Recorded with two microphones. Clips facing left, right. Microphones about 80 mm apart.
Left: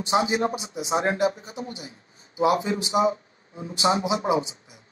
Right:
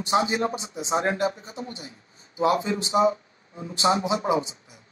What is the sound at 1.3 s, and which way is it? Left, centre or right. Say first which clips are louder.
A man's voice: left 1 dB; centre.